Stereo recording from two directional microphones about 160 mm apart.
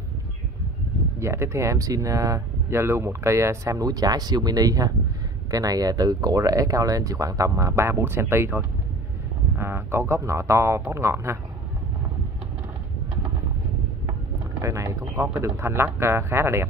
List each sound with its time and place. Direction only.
1.2 s speech: 15° right (ahead or behind)
14.6 s speech: 20° right (ahead or behind)